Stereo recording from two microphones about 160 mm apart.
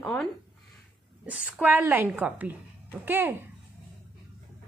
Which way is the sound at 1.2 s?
10° right (ahead or behind).